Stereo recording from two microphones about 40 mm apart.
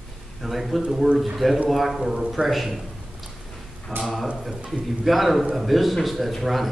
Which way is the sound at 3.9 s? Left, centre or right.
Right.